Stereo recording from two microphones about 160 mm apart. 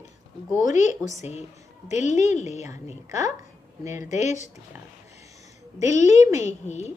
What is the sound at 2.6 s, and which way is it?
Speech, 20° right (ahead or behind).